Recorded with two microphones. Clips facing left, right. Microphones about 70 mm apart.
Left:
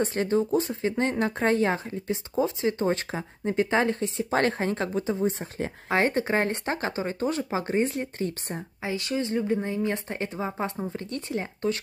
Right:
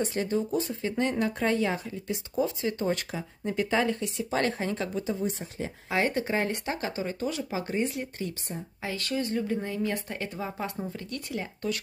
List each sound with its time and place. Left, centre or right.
0.0 s speech: left
2.3 s speech: left
8.8 s a woman's voice: left